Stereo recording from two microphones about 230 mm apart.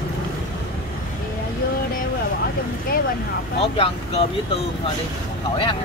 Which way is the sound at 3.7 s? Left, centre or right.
Left.